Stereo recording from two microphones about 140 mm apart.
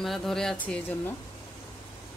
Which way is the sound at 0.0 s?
Centre (ahead or behind).